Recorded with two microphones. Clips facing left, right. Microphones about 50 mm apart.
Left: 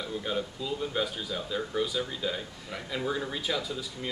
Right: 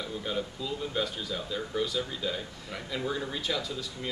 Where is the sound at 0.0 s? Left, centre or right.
Centre.